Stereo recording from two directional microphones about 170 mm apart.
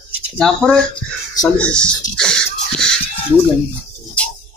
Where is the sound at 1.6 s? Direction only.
5° left (ahead or behind).